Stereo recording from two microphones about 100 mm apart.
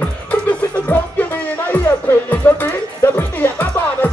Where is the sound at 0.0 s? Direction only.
15° left (ahead or behind).